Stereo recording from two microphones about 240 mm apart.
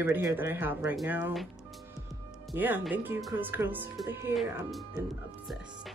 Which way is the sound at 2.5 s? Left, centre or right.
Centre.